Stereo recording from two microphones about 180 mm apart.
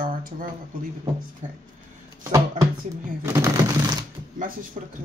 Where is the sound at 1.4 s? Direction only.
40° right (ahead or behind).